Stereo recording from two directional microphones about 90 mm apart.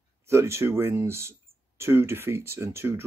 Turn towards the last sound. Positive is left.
turn(degrees=-30)  # may be behind; listen again after turning